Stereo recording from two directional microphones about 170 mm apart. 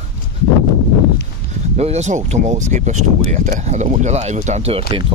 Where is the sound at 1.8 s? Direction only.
40° right (ahead or behind).